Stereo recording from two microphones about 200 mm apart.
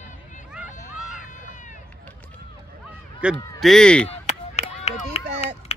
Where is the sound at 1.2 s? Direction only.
40° left (ahead or behind).